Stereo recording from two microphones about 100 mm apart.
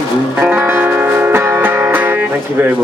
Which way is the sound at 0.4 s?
15° right (ahead or behind).